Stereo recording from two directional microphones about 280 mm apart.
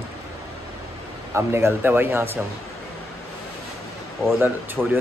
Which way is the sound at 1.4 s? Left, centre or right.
Centre.